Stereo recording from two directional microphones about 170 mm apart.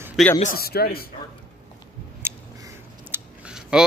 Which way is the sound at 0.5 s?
65° left (ahead or behind).